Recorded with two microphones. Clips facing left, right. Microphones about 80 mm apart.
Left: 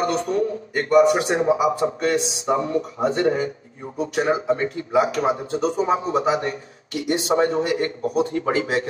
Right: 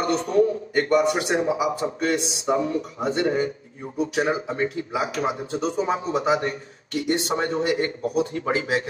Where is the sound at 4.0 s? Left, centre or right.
Left.